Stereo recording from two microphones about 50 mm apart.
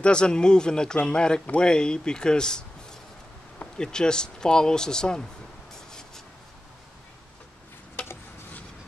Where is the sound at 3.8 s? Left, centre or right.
Centre.